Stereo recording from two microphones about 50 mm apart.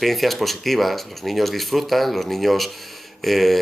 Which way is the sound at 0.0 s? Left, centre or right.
Centre.